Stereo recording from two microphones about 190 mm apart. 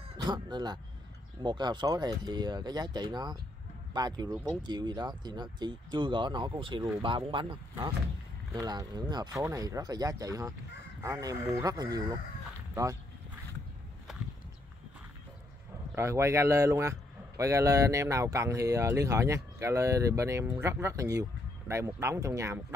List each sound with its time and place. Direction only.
0.2 s speech: 25° right (ahead or behind)
15.9 s speech: 15° right (ahead or behind)